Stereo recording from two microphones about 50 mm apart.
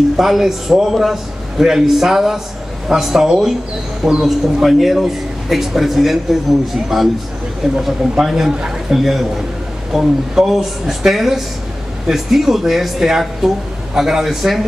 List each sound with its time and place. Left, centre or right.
0.2 s a man's voice: centre